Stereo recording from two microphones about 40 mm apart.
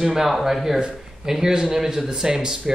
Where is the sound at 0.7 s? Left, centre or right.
Right.